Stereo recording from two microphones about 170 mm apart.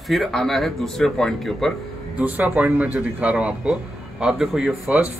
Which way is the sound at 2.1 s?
10° right (ahead or behind).